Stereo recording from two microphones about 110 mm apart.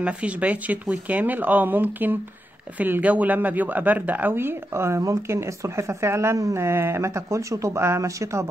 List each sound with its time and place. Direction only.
0.0 s speech: 10° right (ahead or behind); by 8.5 s 25° right (ahead or behind)